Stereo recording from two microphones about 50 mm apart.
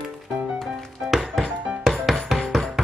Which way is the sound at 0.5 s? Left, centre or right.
Centre.